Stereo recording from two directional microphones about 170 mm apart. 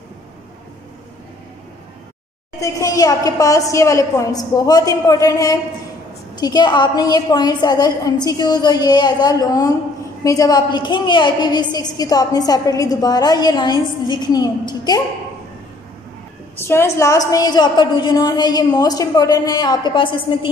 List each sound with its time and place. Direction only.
2.6 s a woman's voice: 20° left (ahead or behind)
16.5 s a woman's voice: 15° left (ahead or behind)